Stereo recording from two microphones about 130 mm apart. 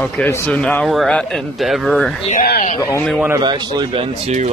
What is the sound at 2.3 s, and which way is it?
Speech, 70° left (ahead or behind).